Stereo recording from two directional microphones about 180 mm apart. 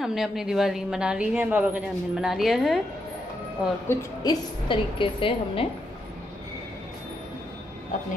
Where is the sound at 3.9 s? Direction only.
15° left (ahead or behind).